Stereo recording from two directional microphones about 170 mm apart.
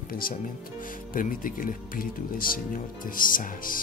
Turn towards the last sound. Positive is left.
turn(degrees=55)  # may be behind; listen again after turning